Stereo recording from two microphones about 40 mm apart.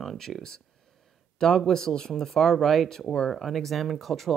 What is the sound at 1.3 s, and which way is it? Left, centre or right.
Speech, centre.